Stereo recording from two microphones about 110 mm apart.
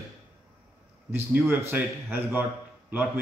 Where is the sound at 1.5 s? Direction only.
15° right (ahead or behind).